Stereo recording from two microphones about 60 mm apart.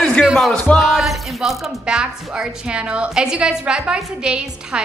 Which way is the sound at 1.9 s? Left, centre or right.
Centre.